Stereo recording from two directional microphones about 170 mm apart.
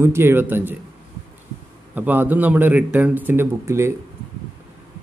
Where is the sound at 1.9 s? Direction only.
10° right (ahead or behind).